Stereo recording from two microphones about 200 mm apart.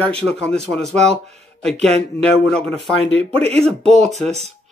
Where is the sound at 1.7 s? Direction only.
30° right (ahead or behind).